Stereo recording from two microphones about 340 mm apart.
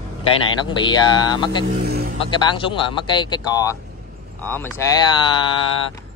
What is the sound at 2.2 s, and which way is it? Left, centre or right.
Speech, centre.